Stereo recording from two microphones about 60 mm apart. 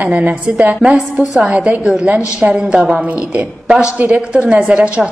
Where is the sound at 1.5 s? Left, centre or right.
Centre.